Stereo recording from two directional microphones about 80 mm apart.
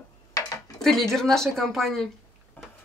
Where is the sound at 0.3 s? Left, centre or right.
Left.